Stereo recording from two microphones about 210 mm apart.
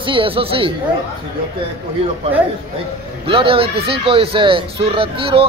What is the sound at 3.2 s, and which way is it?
Speech, 25° right (ahead or behind).